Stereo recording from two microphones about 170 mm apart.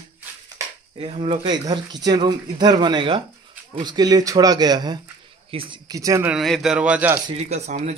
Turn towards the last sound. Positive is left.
turn(degrees=-40)  # may be behind; listen again after turning